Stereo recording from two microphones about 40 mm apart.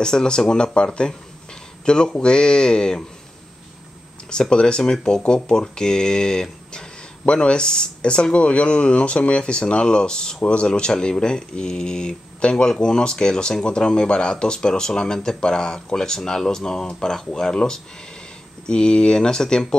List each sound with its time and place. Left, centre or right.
0.0 s speech: centre
4.3 s speech: left